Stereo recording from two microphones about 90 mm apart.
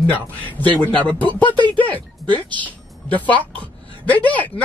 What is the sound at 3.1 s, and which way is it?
A man's voice, 15° left (ahead or behind).